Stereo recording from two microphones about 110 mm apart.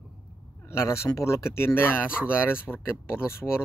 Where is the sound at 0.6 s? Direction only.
25° left (ahead or behind).